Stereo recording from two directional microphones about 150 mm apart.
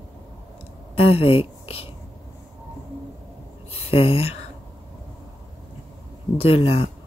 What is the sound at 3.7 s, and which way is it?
Speech, 40° left (ahead or behind).